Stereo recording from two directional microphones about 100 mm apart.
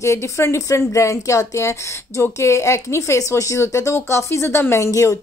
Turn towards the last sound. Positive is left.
turn(degrees=30)  # may be behind; listen again after turning